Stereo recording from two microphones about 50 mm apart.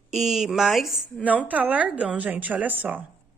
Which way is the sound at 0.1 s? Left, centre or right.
Centre.